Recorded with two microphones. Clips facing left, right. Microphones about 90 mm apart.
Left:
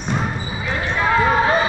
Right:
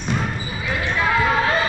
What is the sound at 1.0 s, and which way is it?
Basketball bounce, 20° left (ahead or behind).